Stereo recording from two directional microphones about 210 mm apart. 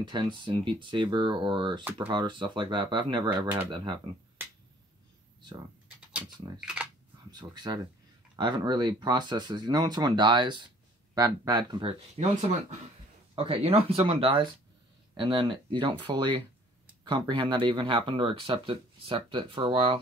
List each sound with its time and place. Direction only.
0.0 s speech: 20° right (ahead or behind)
6.6 s speech: 5° right (ahead or behind)
7.2 s speech: 20° right (ahead or behind)